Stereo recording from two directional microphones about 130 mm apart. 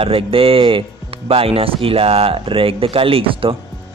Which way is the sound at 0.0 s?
45° right (ahead or behind).